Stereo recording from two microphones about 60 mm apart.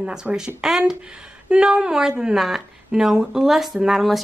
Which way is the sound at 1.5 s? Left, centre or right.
Centre.